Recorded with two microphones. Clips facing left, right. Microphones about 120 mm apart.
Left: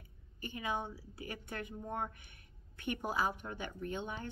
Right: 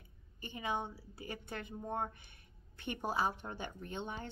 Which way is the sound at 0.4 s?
25° right (ahead or behind).